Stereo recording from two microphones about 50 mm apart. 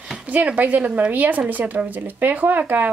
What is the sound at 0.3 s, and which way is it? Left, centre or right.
Speech, right.